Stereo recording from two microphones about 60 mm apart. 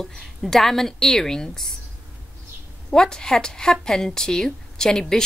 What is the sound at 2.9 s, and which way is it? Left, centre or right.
Speech, centre.